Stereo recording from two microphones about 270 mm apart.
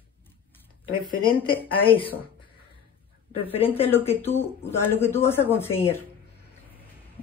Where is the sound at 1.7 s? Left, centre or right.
Centre.